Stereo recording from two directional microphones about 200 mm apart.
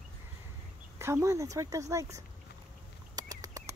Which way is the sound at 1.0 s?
15° right (ahead or behind).